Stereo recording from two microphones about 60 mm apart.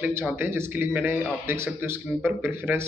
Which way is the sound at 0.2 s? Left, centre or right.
Right.